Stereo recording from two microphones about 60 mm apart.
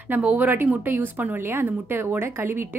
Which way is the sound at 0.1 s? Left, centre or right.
Right.